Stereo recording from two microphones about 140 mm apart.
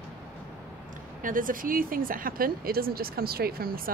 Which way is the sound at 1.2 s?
75° right (ahead or behind).